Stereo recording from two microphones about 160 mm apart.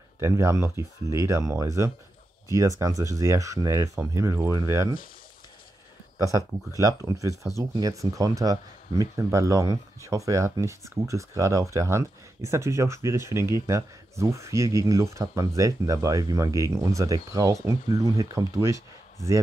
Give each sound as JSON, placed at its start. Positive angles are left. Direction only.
{"t": 0.2, "sound": "speech", "side_deg": -15}
{"t": 6.1, "sound": "speech", "side_deg": -20}